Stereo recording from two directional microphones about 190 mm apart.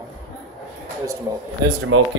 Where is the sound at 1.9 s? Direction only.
90° right.